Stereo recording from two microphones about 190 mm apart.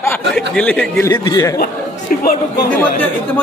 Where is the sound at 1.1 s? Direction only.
20° left (ahead or behind).